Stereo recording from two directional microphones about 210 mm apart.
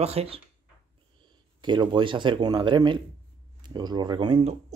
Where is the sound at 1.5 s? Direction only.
20° right (ahead or behind).